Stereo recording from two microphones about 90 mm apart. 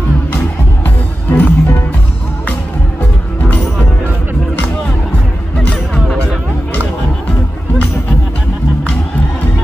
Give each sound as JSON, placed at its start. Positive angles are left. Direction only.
{"t": 0.8, "sound": "music", "side_deg": 20}